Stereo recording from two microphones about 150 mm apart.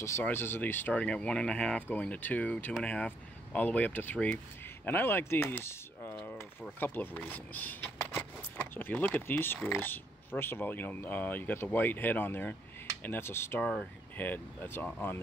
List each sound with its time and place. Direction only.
0.2 s speech: 15° left (ahead or behind)
6.1 s a sound: 10° left (ahead or behind)
6.8 s speech: 10° left (ahead or behind)
13.6 s speech: centre (ahead or behind)
14.1 s speech: 10° left (ahead or behind)